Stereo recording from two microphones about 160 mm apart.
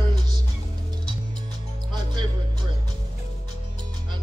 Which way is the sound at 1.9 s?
30° right (ahead or behind).